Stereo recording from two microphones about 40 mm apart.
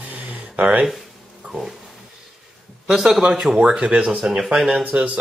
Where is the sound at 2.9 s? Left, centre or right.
Centre.